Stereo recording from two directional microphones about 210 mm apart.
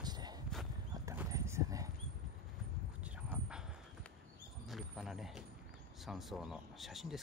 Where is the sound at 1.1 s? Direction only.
15° right (ahead or behind).